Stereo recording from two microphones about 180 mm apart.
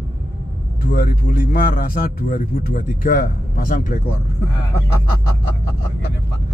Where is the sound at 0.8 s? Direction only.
50° left (ahead or behind).